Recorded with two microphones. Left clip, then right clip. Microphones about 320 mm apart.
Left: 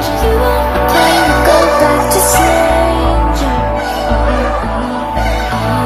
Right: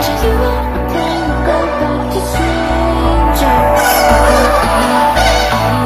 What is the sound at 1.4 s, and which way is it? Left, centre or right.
Music, left.